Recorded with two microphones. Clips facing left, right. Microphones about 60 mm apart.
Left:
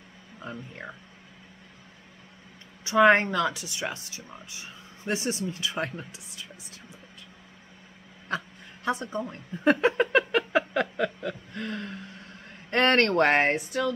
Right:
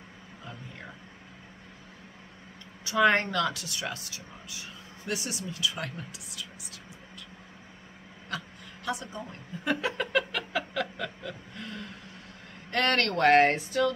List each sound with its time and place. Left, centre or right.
2.8 s speech: left
8.3 s a sound: left
8.8 s a woman's voice: left
9.7 s a sound: left
11.2 s speech: left
12.7 s speech: left